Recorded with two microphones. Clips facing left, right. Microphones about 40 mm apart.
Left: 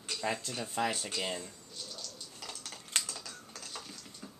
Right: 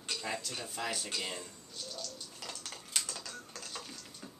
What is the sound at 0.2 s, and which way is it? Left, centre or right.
Speech, left.